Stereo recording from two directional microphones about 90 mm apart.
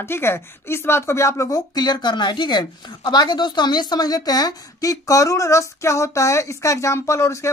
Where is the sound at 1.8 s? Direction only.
55° left (ahead or behind).